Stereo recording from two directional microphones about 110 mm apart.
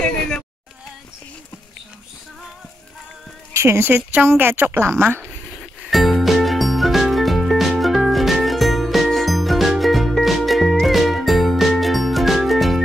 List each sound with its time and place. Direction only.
3.5 s a woman's voice: 25° right (ahead or behind)
5.9 s music: centre (ahead or behind)